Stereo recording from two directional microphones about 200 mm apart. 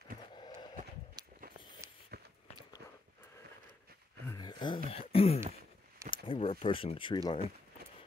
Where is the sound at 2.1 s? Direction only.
50° right (ahead or behind).